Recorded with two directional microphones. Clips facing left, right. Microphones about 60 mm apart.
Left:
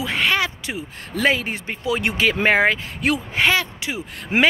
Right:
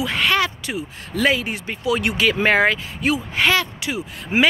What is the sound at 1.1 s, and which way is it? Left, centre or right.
Speech, left.